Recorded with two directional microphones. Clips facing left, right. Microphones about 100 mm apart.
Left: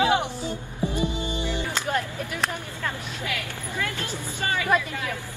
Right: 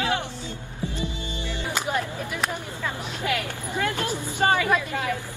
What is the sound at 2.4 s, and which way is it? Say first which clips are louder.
Speech: even; 10° right (ahead or behind).